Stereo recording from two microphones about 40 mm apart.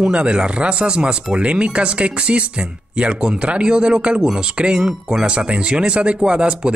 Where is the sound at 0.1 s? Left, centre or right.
Right.